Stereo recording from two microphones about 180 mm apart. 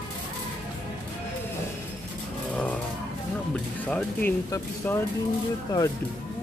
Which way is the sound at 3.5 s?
5° left (ahead or behind).